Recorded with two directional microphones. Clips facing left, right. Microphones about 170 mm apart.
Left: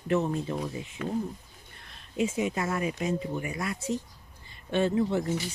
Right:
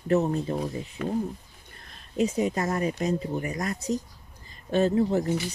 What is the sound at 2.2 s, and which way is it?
Speech, 40° right (ahead or behind).